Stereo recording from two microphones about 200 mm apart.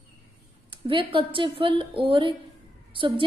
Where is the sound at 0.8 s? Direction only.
25° right (ahead or behind).